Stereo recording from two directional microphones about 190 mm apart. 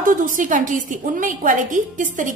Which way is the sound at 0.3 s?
45° right (ahead or behind).